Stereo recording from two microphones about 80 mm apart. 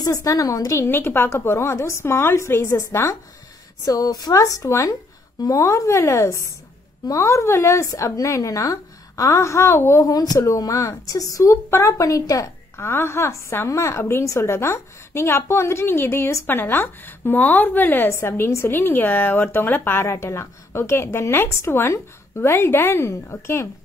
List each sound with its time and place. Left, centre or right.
0.0 s a woman's voice: left
0.7 s speech: left
3.8 s a woman's voice: left
12.8 s a woman's voice: left